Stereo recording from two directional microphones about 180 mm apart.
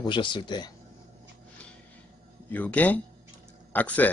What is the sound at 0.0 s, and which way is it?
Speech, 25° left (ahead or behind).